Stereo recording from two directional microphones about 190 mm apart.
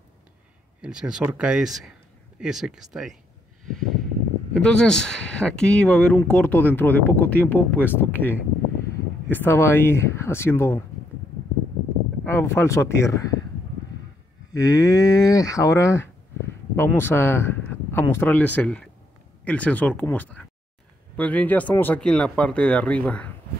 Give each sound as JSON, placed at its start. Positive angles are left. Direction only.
{"t": 0.7, "sound": "speech", "side_deg": -5}
{"t": 12.3, "sound": "speech", "side_deg": 15}
{"t": 14.6, "sound": "speech", "side_deg": 20}